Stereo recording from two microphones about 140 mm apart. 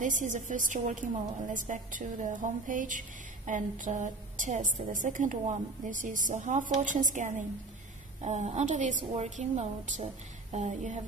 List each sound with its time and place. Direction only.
0.0 s a woman's voice: 65° right (ahead or behind)